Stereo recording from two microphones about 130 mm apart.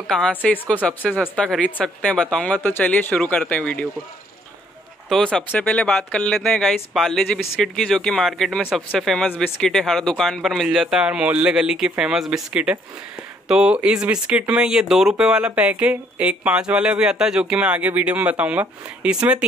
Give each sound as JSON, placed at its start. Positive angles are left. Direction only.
{"t": 0.1, "sound": "speech", "side_deg": 10}
{"t": 5.1, "sound": "speech", "side_deg": 5}